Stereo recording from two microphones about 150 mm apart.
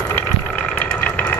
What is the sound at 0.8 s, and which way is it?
Engine, 10° left (ahead or behind).